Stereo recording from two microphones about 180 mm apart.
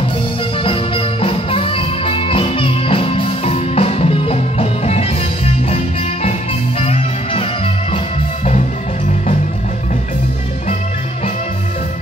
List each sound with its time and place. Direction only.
0.7 s music: 30° left (ahead or behind)
6.8 s music: 35° left (ahead or behind)